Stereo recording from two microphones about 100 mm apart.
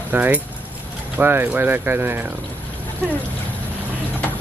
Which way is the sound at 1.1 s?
20° right (ahead or behind).